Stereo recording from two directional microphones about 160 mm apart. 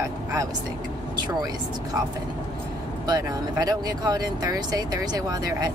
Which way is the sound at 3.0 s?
25° right (ahead or behind).